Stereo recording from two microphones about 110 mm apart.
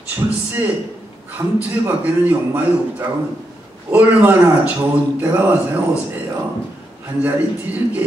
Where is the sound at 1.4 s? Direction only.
25° right (ahead or behind).